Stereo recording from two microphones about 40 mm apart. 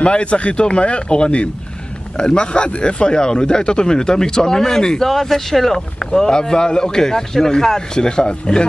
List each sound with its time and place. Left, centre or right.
0.0 s a man's voice: left